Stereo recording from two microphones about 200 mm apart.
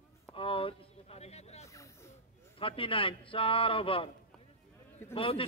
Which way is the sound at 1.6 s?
15° left (ahead or behind).